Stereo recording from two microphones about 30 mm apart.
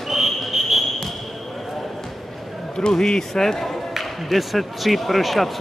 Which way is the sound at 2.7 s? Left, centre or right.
Left.